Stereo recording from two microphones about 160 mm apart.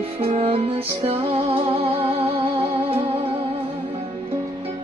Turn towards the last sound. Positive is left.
turn(degrees=-35)  # may be behind; listen again after turning